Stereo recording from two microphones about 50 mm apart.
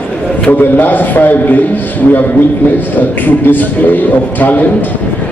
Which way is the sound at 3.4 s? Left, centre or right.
Left.